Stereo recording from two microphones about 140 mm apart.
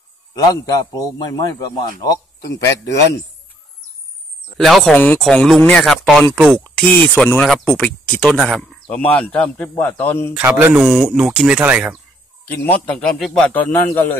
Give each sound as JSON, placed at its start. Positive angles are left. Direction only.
{"t": 0.3, "sound": "a man's voice", "side_deg": 25}
{"t": 4.6, "sound": "speech", "side_deg": 0}
{"t": 4.9, "sound": "speech", "side_deg": 10}
{"t": 10.6, "sound": "speech", "side_deg": -10}
{"t": 10.9, "sound": "speech", "side_deg": 0}
{"t": 12.4, "sound": "speech", "side_deg": 10}